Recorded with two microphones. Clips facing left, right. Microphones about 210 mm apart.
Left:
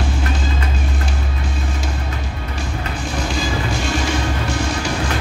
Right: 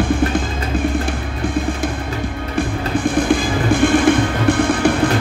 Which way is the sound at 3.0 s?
55° right (ahead or behind).